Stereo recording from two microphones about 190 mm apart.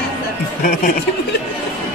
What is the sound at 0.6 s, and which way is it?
Speech, 50° left (ahead or behind).